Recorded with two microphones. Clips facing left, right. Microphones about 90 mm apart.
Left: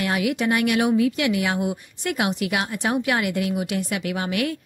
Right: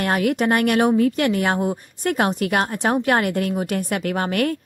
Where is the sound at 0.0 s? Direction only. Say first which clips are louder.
Right 3 dB; 45° right (ahead or behind).